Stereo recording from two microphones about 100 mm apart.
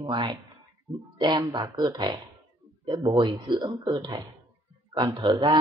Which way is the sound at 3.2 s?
50° right (ahead or behind).